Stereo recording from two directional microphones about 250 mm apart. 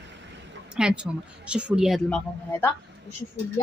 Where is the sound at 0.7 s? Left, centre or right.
Centre.